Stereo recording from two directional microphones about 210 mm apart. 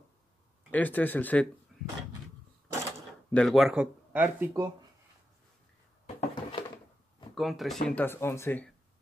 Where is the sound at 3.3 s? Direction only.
5° left (ahead or behind).